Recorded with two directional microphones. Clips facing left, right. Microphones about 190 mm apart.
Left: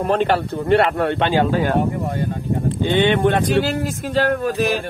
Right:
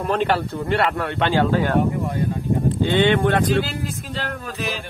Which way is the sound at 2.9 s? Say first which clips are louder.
Left 2 dB; 20° left (ahead or behind).